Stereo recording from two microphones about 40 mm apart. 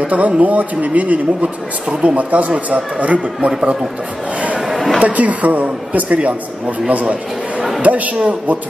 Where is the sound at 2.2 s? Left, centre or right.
Right.